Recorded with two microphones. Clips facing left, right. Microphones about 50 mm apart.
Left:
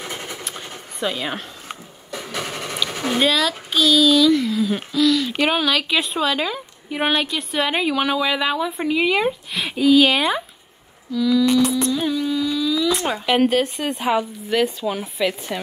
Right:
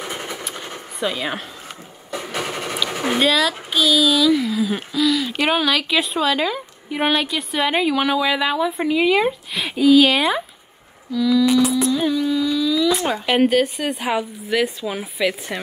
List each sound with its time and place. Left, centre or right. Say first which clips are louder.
0.0 s vehicle: right 2 dB; right
0.9 s speech: right 1 dB; centre
2.0 s vehicle: right 2 dB; right
2.9 s a sound: right 2 dB; right
3.2 s a woman's voice: right 1 dB; centre